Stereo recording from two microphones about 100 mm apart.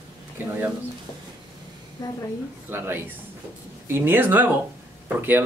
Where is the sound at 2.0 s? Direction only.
35° left (ahead or behind).